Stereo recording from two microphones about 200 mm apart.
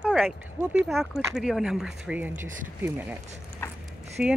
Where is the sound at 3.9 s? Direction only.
Centre (ahead or behind).